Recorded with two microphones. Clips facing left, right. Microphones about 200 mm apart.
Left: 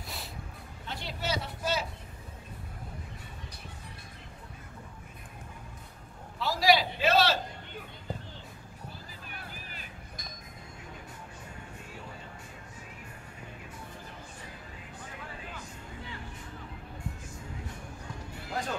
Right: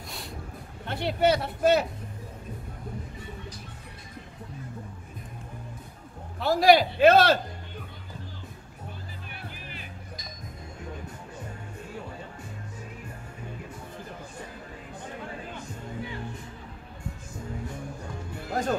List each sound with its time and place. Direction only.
0.8 s speech: 60° right (ahead or behind)
6.4 s a man's voice: 55° right (ahead or behind)
9.3 s music: 45° left (ahead or behind)
18.5 s music: 45° right (ahead or behind)